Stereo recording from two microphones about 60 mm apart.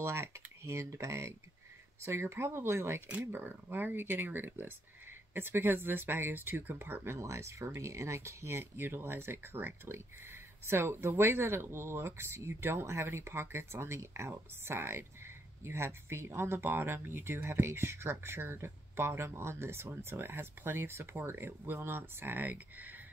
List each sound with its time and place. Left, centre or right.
0.0 s speech: right
7.2 s speech: right